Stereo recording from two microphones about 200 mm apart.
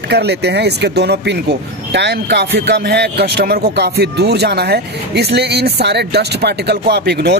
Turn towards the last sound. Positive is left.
turn(degrees=-55)  # may be behind; listen again after turning